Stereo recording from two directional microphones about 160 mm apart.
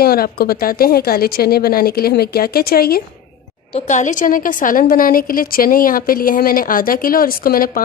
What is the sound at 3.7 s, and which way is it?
A woman's voice, 50° left (ahead or behind).